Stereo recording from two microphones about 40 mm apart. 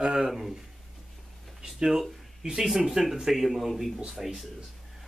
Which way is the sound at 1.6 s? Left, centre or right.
Centre.